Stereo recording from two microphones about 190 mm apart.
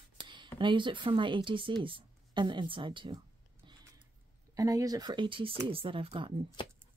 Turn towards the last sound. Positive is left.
turn(degrees=-30)  # may be behind; listen again after turning